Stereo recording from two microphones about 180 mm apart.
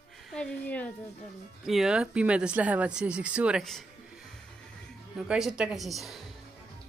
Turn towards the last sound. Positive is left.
turn(degrees=0)  # may be behind; listen again after turning